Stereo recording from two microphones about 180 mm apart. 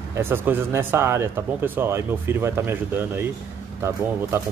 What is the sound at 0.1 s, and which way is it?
Speech, 10° right (ahead or behind).